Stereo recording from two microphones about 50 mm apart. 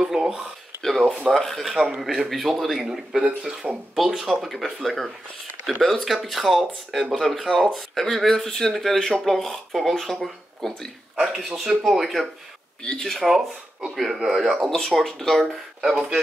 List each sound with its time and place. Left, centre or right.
0.0 s a sound: centre
0.8 s a sound: centre
1.3 s speech: centre
3.6 s speech: right
4.2 s speech: centre
11.3 s speech: centre